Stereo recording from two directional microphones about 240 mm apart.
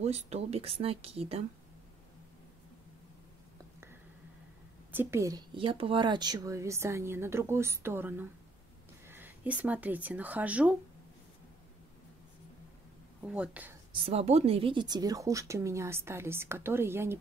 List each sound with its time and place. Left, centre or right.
0.0 s speech: right
4.9 s speech: centre
13.2 s speech: centre
14.0 s speech: right; by 17.2 s centre